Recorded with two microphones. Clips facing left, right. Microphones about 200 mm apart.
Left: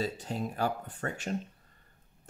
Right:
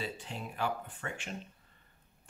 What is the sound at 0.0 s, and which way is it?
Speech, 40° left (ahead or behind).